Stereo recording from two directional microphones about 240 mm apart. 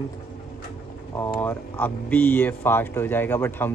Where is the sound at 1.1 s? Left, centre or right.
Centre.